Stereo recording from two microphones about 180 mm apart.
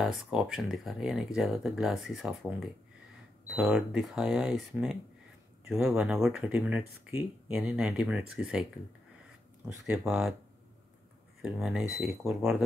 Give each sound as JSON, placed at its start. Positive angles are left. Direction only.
{"t": 0.0, "sound": "speech", "side_deg": -5}
{"t": 9.7, "sound": "speech", "side_deg": -10}
{"t": 11.4, "sound": "speech", "side_deg": -5}